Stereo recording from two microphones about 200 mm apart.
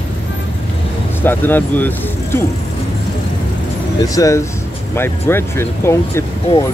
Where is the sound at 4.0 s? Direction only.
15° left (ahead or behind).